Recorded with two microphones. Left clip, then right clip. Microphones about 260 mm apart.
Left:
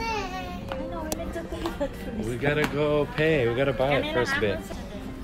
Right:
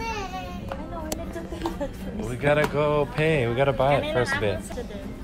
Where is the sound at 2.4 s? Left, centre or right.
Centre.